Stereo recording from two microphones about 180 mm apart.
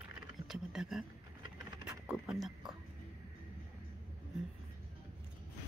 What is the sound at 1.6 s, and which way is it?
Patter, 15° right (ahead or behind).